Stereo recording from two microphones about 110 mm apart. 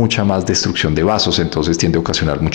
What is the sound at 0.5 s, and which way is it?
Speech, 25° left (ahead or behind).